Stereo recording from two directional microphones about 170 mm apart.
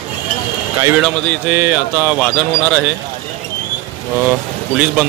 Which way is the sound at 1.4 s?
10° right (ahead or behind).